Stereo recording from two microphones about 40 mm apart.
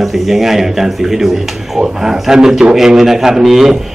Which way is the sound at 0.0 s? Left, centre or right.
Centre.